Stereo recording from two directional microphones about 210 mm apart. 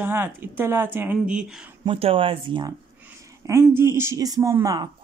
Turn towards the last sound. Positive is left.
turn(degrees=-15)  # may be behind; listen again after turning